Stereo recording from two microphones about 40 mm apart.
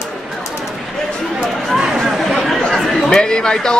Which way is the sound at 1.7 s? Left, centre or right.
Centre.